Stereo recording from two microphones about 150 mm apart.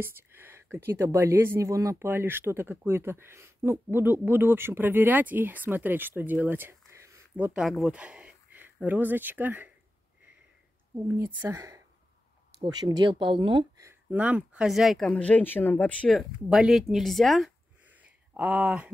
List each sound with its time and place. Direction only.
0.0 s speech: 15° right (ahead or behind)
11.1 s speech: 15° right (ahead or behind); by 13.7 s 35° right (ahead or behind)
14.1 s speech: 10° right (ahead or behind)
18.3 s speech: 10° right (ahead or behind)